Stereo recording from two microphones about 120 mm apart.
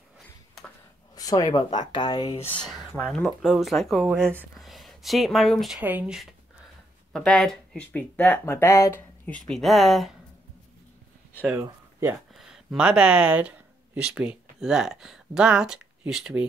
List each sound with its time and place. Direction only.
1.1 s speech: 30° left (ahead or behind)
2.6 s speech: centre (ahead or behind)
5.8 s speech: 15° right (ahead or behind)
7.1 s speech: 5° left (ahead or behind)
9.4 s speech: centre (ahead or behind)
11.4 s speech: 15° right (ahead or behind)
12.4 s speech: 5° right (ahead or behind)